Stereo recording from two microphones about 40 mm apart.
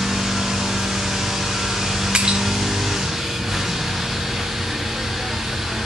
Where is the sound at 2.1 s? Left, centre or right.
Right.